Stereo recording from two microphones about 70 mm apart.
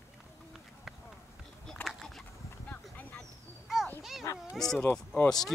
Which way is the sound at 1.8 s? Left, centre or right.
Centre.